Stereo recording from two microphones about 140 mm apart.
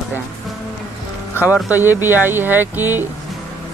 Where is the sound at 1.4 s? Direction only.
15° right (ahead or behind).